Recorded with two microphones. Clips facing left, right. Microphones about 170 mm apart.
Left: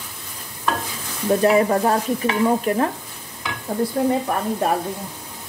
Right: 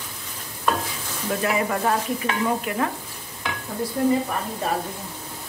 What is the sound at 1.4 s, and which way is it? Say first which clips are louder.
A woman's voice: left 6 dB; 35° left (ahead or behind).